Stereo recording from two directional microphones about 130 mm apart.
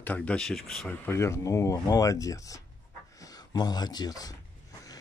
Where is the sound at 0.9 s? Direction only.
20° left (ahead or behind).